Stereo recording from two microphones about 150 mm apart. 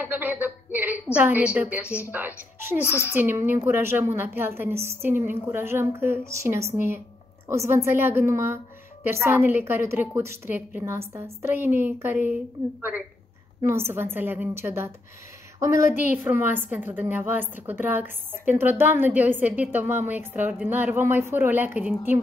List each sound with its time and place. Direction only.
0.0 s a sound: 10° right (ahead or behind)
1.1 s a woman's voice: 10° right (ahead or behind)
2.8 s a child's voice: 15° left (ahead or behind)
3.1 s a woman's voice: 15° right (ahead or behind)
13.7 s a woman's voice: 15° right (ahead or behind)